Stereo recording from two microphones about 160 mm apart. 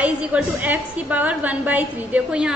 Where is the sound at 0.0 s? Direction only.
10° right (ahead or behind).